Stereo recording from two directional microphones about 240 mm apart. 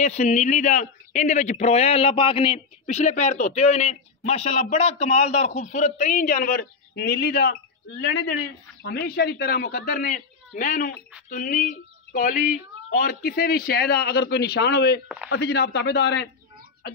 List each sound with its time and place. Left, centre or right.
0.0 s a man's voice: left